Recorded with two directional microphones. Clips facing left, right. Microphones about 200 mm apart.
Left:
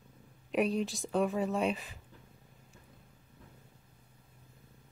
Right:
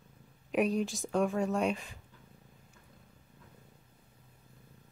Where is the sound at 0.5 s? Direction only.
Centre (ahead or behind).